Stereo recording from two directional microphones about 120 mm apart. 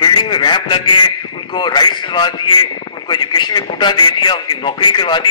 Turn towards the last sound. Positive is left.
turn(degrees=40)  # may be behind; listen again after turning